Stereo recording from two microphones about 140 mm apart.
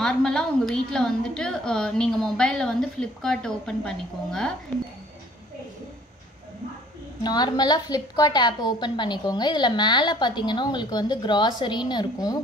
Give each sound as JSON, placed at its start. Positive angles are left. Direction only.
{"t": 0.0, "sound": "a woman's voice", "side_deg": 5}
{"t": 7.2, "sound": "a woman's voice", "side_deg": 30}